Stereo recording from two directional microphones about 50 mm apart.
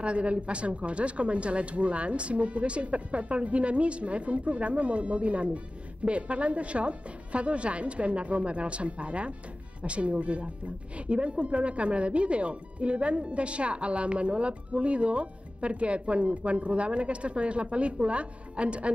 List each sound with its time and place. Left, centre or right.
0.0 s speech: right